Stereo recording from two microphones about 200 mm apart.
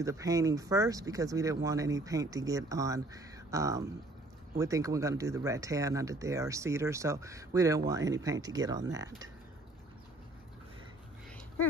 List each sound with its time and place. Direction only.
0.0 s speech: 15° right (ahead or behind)